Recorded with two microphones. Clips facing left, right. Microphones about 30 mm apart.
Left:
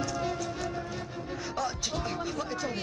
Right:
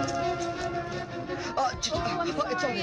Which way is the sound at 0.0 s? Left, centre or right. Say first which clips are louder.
Right 3 dB; centre.